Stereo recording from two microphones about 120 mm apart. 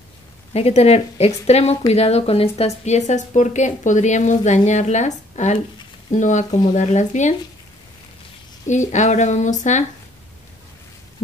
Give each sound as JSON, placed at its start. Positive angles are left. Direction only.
{"t": 0.5, "sound": "a woman's voice", "side_deg": 60}
{"t": 6.1, "sound": "speech", "side_deg": 90}
{"t": 8.6, "sound": "speech", "side_deg": 85}